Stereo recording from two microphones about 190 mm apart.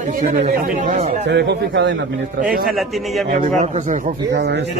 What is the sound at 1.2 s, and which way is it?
Speech, 65° right (ahead or behind).